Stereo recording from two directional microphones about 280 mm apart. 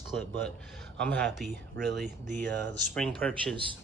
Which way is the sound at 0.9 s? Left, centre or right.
Centre.